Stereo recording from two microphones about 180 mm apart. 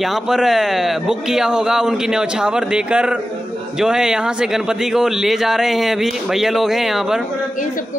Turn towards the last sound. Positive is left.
turn(degrees=0)  # may be behind; listen again after turning